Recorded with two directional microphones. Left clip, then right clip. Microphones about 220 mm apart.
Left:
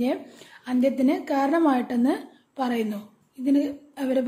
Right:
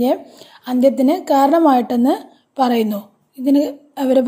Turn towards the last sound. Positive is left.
turn(degrees=-30)  # may be behind; listen again after turning